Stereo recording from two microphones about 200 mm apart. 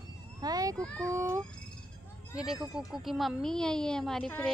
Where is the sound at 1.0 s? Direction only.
15° right (ahead or behind).